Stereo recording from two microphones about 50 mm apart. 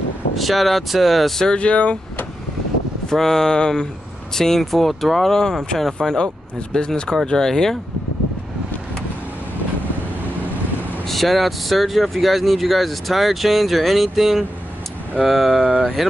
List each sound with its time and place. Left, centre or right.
0.4 s speech: centre
1.4 s speech: centre
3.1 s speech: centre
11.1 s speech: centre